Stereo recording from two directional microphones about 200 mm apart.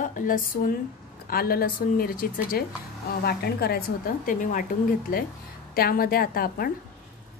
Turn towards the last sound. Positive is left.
turn(degrees=50)  # may be behind; listen again after turning